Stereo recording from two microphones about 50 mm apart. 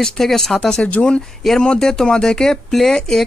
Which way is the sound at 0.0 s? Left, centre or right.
Centre.